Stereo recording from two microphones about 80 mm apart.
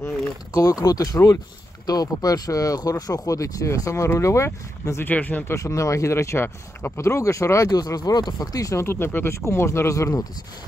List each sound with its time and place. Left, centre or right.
0.6 s speech: left
5.0 s speech: left
5.5 s speech: left
8.8 s speech: left